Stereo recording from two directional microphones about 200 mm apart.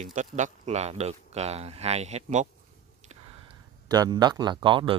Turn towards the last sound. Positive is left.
turn(degrees=-25)  # may be behind; listen again after turning